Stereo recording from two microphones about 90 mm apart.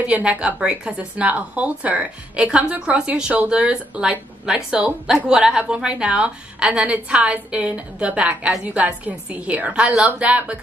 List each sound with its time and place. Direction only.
0.0 s a woman's voice: 15° right (ahead or behind)